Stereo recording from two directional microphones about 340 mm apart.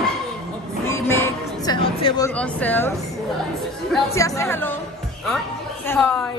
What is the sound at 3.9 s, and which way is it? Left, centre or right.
Speech, centre.